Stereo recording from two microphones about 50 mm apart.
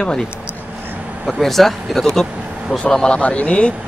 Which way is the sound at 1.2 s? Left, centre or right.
Centre.